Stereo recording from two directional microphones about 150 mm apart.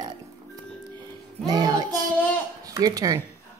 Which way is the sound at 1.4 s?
25° right (ahead or behind).